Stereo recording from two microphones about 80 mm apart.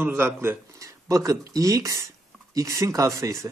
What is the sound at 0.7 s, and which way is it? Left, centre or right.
Speech, right.